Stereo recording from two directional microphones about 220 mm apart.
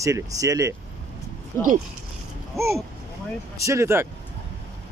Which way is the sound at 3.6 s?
15° right (ahead or behind).